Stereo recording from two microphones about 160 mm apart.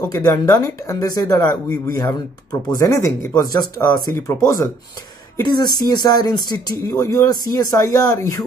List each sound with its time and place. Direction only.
0.1 s speech: 15° left (ahead or behind)